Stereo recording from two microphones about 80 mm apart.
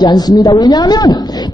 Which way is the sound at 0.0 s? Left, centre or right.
Left.